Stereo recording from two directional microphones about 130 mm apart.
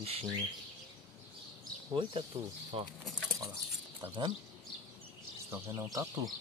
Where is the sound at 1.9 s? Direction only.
40° right (ahead or behind).